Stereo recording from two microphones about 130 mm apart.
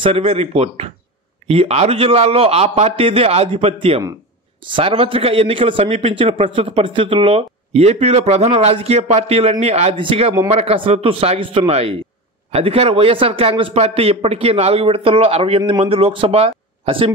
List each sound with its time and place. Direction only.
0.0 s a man's voice: 45° right (ahead or behind)